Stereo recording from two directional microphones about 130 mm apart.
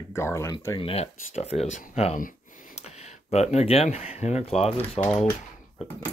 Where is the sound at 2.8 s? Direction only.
55° left (ahead or behind).